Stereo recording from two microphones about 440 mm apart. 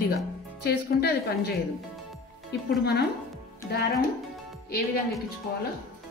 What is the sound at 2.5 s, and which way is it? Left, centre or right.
Speech, left.